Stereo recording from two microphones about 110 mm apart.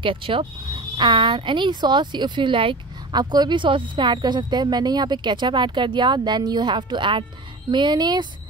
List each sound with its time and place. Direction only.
0.0 s speech: 50° right (ahead or behind)